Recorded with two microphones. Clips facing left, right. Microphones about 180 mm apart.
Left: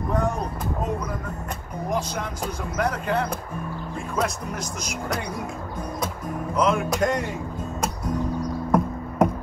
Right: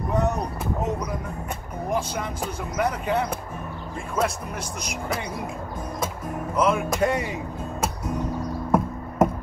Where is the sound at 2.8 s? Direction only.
5° right (ahead or behind).